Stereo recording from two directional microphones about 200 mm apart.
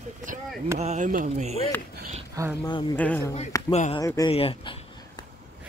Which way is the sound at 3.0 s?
5° left (ahead or behind).